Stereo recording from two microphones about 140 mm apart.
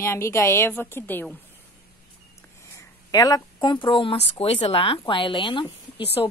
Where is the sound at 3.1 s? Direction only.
25° left (ahead or behind).